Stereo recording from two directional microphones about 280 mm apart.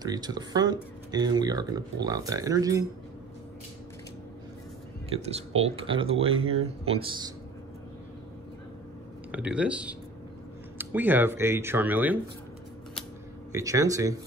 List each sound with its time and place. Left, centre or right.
0.0 s speech: centre
5.6 s speech: centre
9.3 s speech: centre
13.5 s speech: centre